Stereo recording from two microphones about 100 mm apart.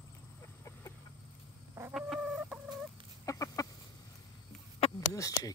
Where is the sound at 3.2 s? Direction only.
35° left (ahead or behind).